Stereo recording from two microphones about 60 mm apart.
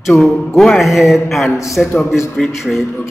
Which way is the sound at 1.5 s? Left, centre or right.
Left.